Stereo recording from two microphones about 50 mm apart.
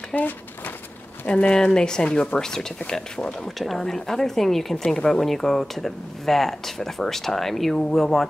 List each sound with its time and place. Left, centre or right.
0.1 s speech: left
1.5 s speech: centre
3.5 s speech: centre